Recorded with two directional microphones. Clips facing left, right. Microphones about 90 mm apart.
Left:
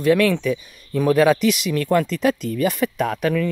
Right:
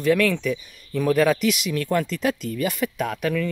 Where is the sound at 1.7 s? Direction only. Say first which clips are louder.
Left 4 dB; 60° left (ahead or behind).